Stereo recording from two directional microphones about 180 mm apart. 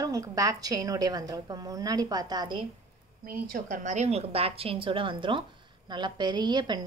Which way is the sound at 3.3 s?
50° right (ahead or behind).